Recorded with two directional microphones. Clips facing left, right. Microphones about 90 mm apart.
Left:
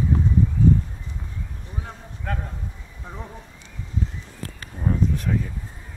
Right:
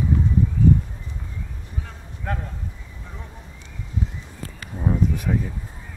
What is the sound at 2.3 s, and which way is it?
Speech, 5° right (ahead or behind).